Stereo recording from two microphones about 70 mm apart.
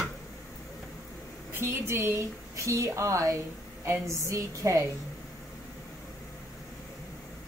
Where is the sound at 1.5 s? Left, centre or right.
Right.